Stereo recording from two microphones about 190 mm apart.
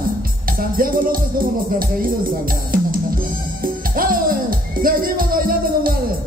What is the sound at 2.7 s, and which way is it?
Music, 50° right (ahead or behind).